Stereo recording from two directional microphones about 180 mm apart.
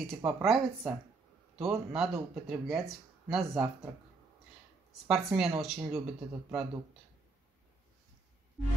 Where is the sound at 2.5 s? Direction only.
Centre (ahead or behind).